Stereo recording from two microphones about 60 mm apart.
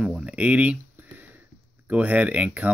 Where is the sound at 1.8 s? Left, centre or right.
Right.